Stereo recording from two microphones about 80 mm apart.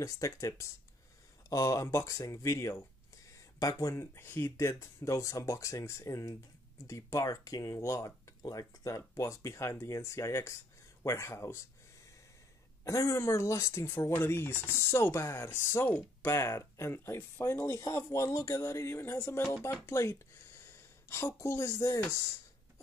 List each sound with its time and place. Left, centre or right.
0.0 s speech: left
3.9 s speech: left
12.8 s a woman's voice: left